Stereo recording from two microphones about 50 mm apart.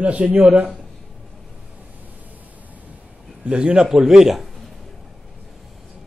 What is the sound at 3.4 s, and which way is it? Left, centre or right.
Speech, right.